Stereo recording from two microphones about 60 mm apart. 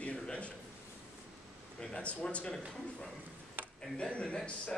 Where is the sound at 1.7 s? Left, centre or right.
Centre.